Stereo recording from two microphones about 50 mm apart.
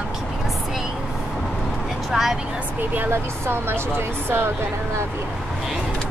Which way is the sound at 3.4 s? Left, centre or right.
Right.